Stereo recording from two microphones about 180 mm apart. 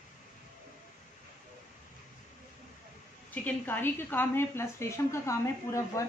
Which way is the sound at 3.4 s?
10° left (ahead or behind).